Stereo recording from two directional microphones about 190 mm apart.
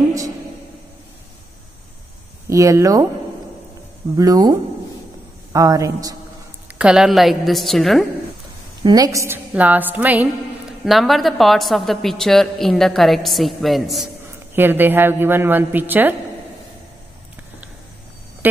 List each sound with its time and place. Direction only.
2.5 s a woman's voice: 15° right (ahead or behind)
4.2 s a woman's voice: 20° right (ahead or behind)
6.8 s a woman's voice: 5° right (ahead or behind)
8.8 s a woman's voice: 20° right (ahead or behind); by 14.0 s centre (ahead or behind)
14.5 s a woman's voice: 10° right (ahead or behind)
18.4 s music: 10° right (ahead or behind)